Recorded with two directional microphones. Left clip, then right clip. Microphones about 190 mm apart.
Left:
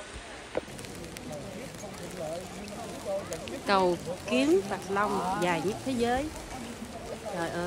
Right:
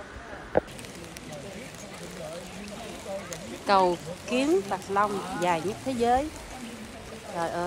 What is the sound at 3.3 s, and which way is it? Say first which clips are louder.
Speech: right 5 dB; centre (ahead or behind).